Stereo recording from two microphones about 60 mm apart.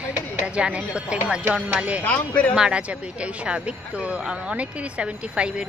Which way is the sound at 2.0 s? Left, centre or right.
Left.